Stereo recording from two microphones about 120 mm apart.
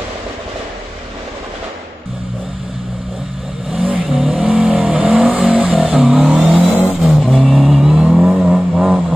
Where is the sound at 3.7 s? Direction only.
10° right (ahead or behind).